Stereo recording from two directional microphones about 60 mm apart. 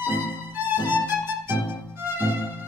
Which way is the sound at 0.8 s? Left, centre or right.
Right.